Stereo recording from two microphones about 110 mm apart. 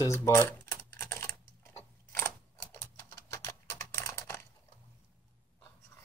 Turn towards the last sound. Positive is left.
turn(degrees=25)  # may be behind; listen again after turning